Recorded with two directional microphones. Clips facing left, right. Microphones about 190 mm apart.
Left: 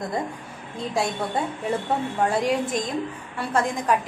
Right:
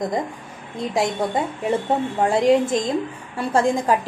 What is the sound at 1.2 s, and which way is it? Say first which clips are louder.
A woman's voice: right 4 dB; 20° right (ahead or behind).